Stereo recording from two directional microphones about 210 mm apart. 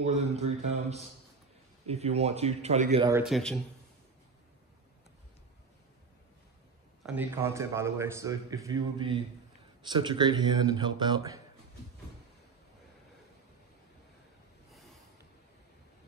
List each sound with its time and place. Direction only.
0.0 s a man's voice: 30° right (ahead or behind)
3.3 s speech: centre (ahead or behind)
7.0 s a man's voice: 5° right (ahead or behind)